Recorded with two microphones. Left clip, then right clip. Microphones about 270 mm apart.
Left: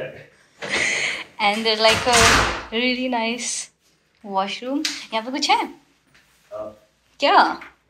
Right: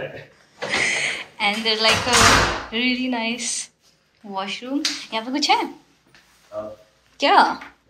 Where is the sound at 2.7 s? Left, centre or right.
Centre.